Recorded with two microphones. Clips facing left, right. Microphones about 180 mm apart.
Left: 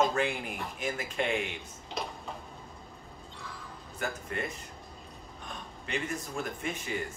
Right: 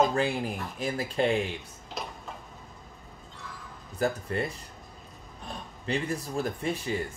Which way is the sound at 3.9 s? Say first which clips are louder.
Right 7 dB; 35° right (ahead or behind).